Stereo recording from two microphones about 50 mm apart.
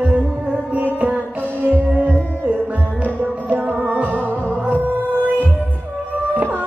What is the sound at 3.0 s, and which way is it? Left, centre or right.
Music, right.